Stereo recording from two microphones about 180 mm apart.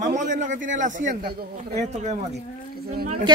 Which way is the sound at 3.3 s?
25° right (ahead or behind).